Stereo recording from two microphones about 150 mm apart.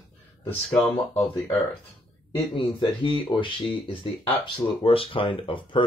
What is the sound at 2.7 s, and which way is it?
Speech, 35° left (ahead or behind).